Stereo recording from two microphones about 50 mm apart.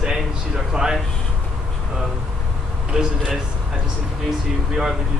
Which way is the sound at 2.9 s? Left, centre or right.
Centre.